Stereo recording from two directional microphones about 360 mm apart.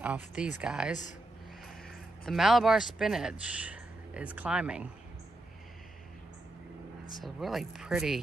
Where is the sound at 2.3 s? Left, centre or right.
Centre.